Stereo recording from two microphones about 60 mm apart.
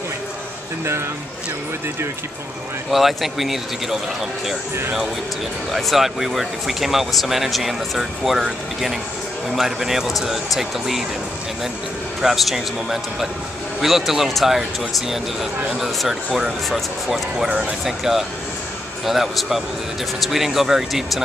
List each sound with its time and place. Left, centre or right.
2.9 s speech: centre
5.7 s speech: centre
9.6 s speech: centre
12.2 s speech: centre
17.5 s speech: centre
17.8 s speech: centre